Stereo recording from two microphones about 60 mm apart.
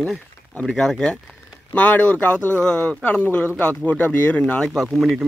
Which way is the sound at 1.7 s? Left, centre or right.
Left.